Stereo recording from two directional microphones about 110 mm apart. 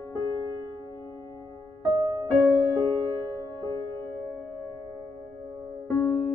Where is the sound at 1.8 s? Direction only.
35° right (ahead or behind).